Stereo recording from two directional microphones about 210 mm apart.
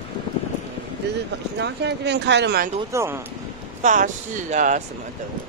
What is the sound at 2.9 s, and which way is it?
Speech, 10° right (ahead or behind).